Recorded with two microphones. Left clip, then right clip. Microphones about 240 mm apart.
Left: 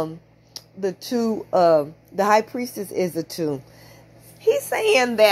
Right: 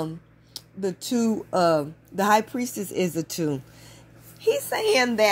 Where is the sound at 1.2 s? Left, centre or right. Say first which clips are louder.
Left 2 dB; right.